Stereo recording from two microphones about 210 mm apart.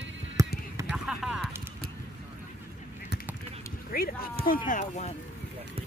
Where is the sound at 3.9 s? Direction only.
45° left (ahead or behind).